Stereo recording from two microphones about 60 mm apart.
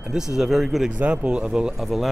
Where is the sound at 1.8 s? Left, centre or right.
Centre.